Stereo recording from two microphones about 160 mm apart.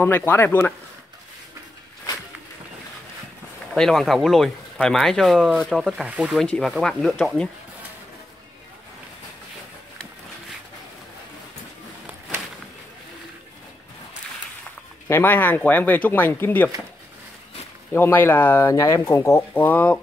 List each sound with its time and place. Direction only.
0.0 s speech: 15° left (ahead or behind)
3.7 s speech: 5° left (ahead or behind)
6.4 s speech: 5° left (ahead or behind)
15.0 s speech: 15° left (ahead or behind)
17.9 s speech: 15° left (ahead or behind)